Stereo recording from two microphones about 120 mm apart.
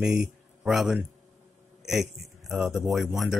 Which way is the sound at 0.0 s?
5° right (ahead or behind).